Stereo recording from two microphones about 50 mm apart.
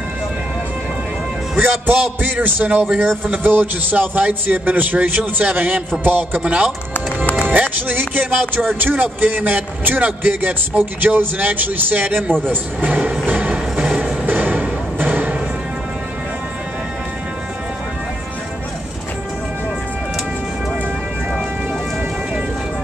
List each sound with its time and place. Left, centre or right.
1.6 s a man's voice: right
7.4 s music: right
8.6 s a man's voice: right
13.2 s music: right
13.7 s music: centre
14.2 s music: right